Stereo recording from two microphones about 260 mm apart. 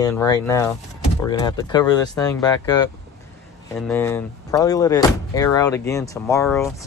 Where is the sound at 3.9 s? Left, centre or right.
Centre.